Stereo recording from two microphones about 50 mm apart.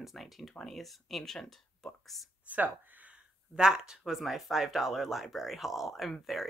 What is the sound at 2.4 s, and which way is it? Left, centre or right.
Speech, right.